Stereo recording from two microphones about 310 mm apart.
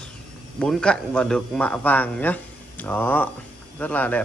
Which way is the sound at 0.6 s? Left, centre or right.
Centre.